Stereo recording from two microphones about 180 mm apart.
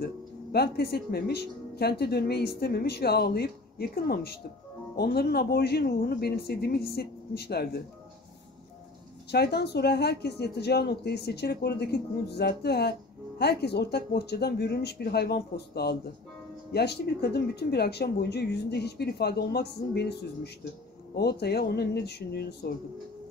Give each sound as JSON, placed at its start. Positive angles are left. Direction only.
{"t": 0.0, "sound": "speech", "side_deg": 60}
{"t": 9.3, "sound": "speech", "side_deg": 65}